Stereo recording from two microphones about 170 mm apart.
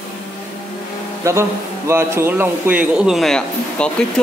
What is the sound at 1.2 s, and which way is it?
A man's voice, 15° right (ahead or behind).